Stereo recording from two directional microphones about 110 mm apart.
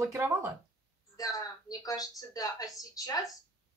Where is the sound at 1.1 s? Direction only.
35° left (ahead or behind).